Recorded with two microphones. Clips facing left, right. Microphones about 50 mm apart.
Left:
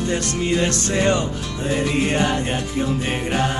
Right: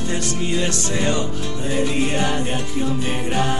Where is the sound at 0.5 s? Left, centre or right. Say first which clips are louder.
Left 4 dB; left.